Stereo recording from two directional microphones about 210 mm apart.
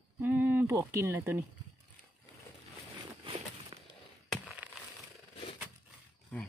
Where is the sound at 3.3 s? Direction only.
30° right (ahead or behind).